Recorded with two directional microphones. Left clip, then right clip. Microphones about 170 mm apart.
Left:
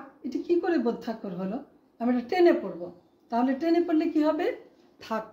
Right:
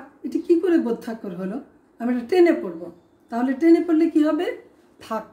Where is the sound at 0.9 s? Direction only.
15° left (ahead or behind).